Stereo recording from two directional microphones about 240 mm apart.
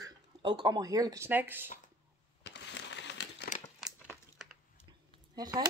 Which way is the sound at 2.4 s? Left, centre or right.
Left.